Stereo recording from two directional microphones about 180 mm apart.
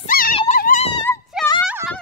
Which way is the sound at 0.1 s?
60° left (ahead or behind).